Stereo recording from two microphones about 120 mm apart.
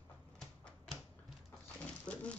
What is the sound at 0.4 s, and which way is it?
Typewriter, 5° left (ahead or behind).